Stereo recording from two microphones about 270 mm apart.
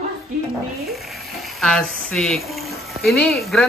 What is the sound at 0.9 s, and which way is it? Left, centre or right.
Speech, centre.